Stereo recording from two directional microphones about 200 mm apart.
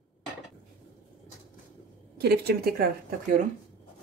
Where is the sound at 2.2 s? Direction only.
50° right (ahead or behind).